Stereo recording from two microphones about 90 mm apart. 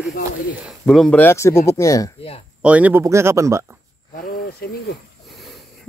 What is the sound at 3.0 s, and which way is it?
Speech, 35° right (ahead or behind).